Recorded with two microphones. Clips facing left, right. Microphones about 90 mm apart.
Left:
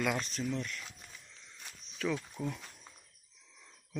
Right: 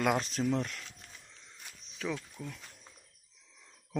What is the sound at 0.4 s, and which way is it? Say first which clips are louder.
Speech: right 5 dB; 50° right (ahead or behind).